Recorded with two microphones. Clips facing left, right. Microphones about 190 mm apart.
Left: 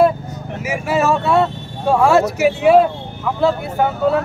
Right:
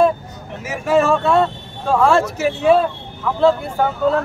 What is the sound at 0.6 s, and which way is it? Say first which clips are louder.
Speech: right 2 dB; 10° left (ahead or behind).